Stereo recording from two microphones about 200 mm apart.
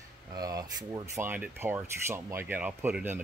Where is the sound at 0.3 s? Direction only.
20° right (ahead or behind).